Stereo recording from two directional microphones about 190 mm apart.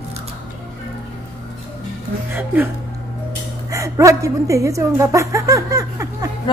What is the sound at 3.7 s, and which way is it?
Speech, 15° right (ahead or behind).